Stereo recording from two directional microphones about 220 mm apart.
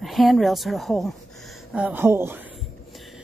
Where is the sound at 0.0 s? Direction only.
Centre (ahead or behind).